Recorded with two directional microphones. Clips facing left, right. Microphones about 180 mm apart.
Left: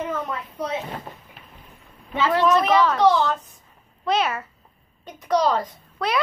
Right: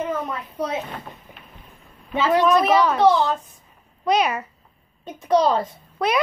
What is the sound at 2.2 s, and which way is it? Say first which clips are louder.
A woman's voice: right 2 dB; 15° right (ahead or behind).